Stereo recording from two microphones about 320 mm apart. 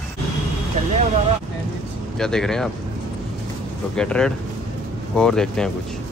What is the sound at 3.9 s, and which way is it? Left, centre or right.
Speech, centre.